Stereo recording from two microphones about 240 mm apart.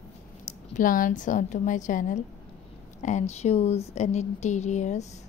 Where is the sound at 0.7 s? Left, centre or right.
Left.